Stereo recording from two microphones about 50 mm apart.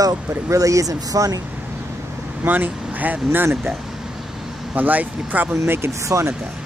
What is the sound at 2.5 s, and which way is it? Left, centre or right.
Speech, right.